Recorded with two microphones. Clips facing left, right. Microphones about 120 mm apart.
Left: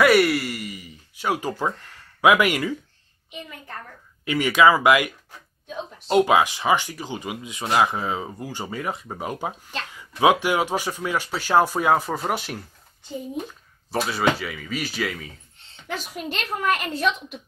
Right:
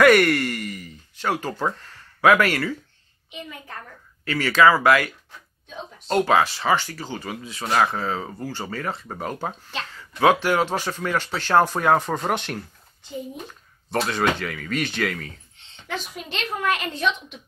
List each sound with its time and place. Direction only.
0.0 s speech: 5° left (ahead or behind)
4.2 s speech: 15° left (ahead or behind)
13.8 s speech: 5° left (ahead or behind)